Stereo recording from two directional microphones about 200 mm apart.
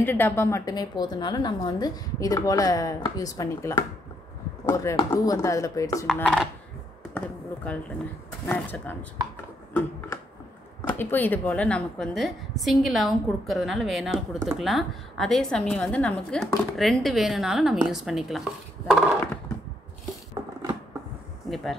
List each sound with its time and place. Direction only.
0.0 s a woman's voice: 10° left (ahead or behind)
6.0 s a woman's voice: centre (ahead or behind)
11.0 s a woman's voice: 10° left (ahead or behind)